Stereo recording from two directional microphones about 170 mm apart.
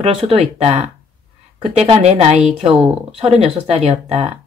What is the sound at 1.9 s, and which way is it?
Speech, 40° right (ahead or behind).